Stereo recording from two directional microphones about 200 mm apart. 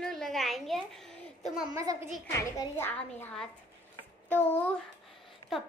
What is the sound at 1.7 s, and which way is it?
Speech, 15° right (ahead or behind).